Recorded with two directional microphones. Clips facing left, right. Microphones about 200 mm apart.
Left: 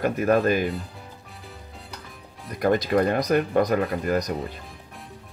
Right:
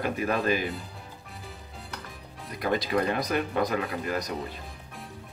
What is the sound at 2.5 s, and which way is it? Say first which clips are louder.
Speech: left 6 dB; 45° left (ahead or behind).